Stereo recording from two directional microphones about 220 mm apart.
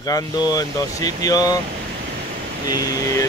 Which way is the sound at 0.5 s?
15° left (ahead or behind).